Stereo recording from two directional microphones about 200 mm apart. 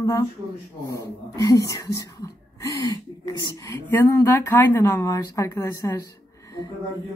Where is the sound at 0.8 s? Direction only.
15° left (ahead or behind).